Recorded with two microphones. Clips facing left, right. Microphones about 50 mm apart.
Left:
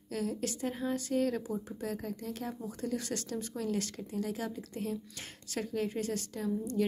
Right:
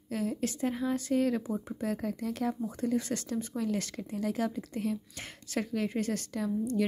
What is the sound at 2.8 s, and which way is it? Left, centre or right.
A woman's voice, right.